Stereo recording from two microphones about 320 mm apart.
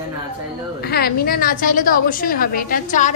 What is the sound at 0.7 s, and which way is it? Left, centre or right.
A woman's voice, left.